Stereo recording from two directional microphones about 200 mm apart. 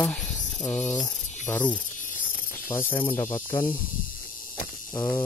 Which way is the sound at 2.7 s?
10° left (ahead or behind).